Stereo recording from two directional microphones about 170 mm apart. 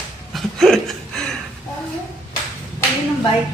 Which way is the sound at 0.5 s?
Centre (ahead or behind).